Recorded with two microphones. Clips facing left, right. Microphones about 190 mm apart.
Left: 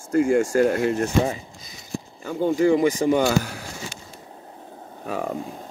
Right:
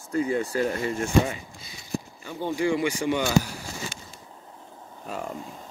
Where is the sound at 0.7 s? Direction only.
70° left (ahead or behind).